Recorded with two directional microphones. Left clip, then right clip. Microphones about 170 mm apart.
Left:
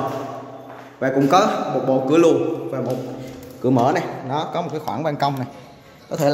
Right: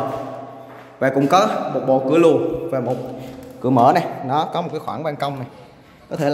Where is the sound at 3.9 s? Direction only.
20° right (ahead or behind).